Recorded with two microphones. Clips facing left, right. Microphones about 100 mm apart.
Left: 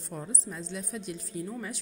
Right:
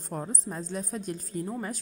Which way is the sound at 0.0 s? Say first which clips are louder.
Right 4 dB; 45° right (ahead or behind).